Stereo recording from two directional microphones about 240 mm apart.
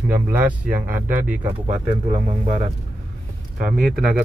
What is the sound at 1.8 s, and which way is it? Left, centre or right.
Speech, right.